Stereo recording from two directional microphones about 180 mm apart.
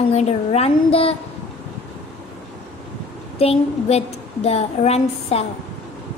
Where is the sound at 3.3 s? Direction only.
35° left (ahead or behind).